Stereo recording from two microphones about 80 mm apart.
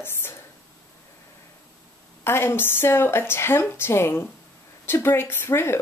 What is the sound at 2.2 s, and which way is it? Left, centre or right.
A woman's voice, left.